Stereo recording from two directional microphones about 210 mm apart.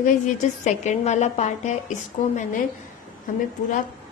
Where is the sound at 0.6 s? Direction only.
35° left (ahead or behind).